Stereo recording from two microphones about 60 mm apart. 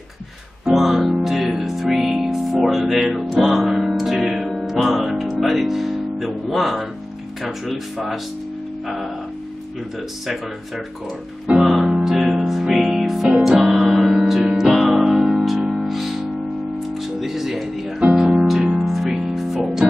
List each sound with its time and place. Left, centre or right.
0.7 s speech: centre
1.2 s music: centre
7.4 s speech: centre
11.6 s music: centre